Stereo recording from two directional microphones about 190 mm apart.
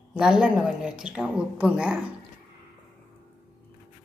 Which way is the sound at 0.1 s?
5° right (ahead or behind).